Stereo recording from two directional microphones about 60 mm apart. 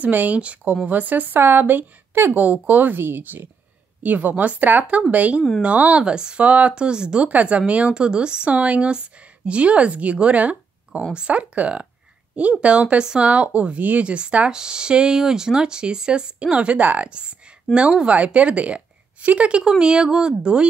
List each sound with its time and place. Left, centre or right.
0.0 s a woman's voice: right
10.9 s speech: centre